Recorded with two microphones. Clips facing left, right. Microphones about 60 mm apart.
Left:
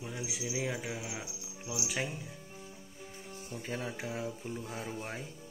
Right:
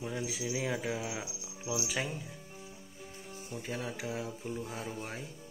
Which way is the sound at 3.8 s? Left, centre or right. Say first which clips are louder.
Even; left.